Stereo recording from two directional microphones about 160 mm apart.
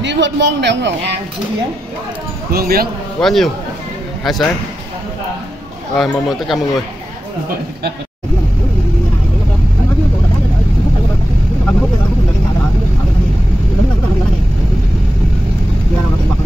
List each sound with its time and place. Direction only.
0.0 s a man's voice: 90° right
2.5 s speech: 70° right (ahead or behind)
3.2 s a man's voice: centre (ahead or behind)
5.9 s speech: centre (ahead or behind)